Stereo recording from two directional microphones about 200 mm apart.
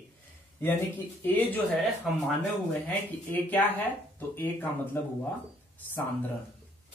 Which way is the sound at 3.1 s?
10° left (ahead or behind).